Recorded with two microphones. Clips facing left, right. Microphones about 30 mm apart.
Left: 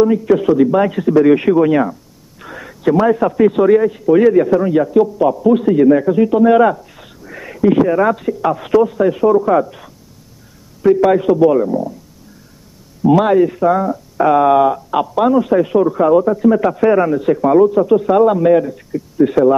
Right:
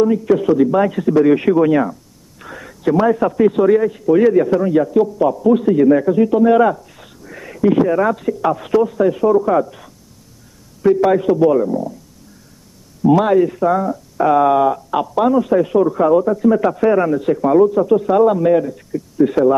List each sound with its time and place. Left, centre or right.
0.2 s a man's voice: centre
11.1 s speech: centre
13.2 s speech: centre